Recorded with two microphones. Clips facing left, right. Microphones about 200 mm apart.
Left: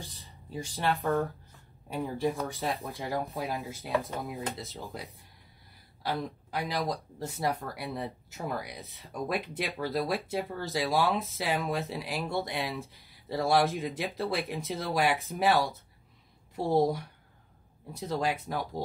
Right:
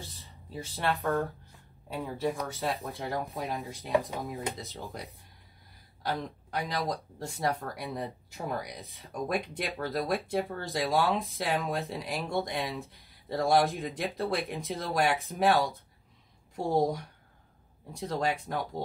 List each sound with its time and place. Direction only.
0.0 s a sound: 15° left (ahead or behind)
0.5 s speech: 15° left (ahead or behind)
2.7 s speech: 15° left (ahead or behind)
3.0 s speech: centre (ahead or behind)
3.9 s speech: 15° right (ahead or behind)
4.2 s speech: centre (ahead or behind)
6.0 s speech: centre (ahead or behind)